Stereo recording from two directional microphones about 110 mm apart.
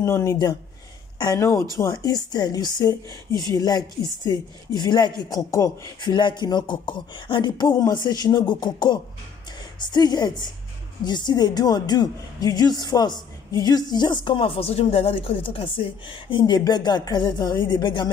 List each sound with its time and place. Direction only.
0.0 s a woman's voice: 25° left (ahead or behind); by 18.1 s 45° left (ahead or behind)